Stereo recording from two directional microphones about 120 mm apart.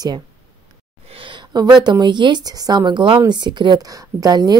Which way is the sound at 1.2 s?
35° right (ahead or behind).